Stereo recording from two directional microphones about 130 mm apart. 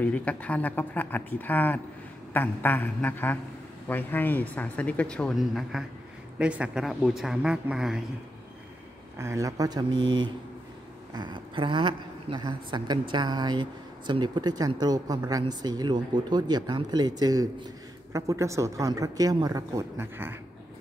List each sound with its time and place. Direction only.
0.0 s a woman's voice: 10° left (ahead or behind); by 8.0 s 5° right (ahead or behind)
9.2 s speech: 25° right (ahead or behind)